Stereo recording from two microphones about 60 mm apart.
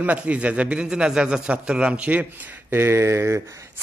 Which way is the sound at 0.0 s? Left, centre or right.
Right.